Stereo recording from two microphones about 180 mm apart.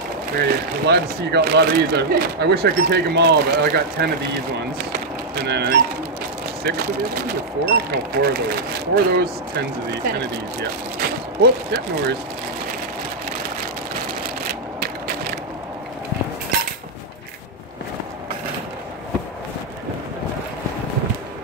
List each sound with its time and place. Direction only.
0.4 s speech: 65° right (ahead or behind)
5.3 s speech: 60° right (ahead or behind)
7.2 s speech: 60° right (ahead or behind)